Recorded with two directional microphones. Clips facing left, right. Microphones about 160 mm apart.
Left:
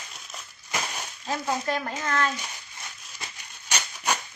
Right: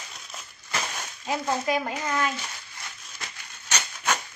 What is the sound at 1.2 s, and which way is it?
A woman's voice, 15° right (ahead or behind).